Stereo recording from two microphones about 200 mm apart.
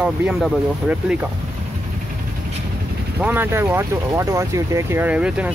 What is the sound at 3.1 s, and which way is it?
Speech, 10° right (ahead or behind).